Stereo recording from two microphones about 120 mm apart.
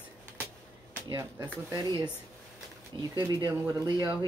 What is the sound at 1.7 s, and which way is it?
Speech, 35° right (ahead or behind).